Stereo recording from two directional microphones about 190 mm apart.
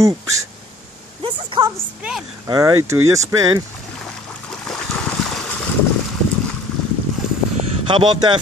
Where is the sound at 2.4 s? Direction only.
20° right (ahead or behind).